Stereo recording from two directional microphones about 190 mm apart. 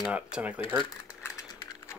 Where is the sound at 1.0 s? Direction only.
15° left (ahead or behind).